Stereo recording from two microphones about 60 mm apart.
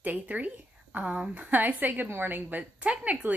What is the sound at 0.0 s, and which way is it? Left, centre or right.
Speech, right.